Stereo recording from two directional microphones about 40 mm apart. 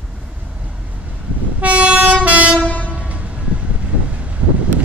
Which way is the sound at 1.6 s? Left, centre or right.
Right.